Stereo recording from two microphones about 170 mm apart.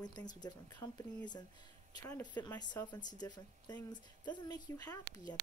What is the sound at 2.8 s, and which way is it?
A woman's voice, 25° left (ahead or behind).